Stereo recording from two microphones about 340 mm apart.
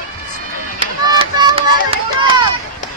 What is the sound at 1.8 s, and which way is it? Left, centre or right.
Run, centre.